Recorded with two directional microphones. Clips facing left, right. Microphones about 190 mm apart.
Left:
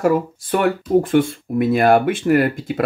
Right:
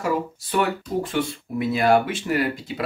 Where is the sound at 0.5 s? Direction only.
50° left (ahead or behind).